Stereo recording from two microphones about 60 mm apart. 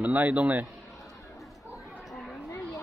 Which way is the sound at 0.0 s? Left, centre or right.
Right.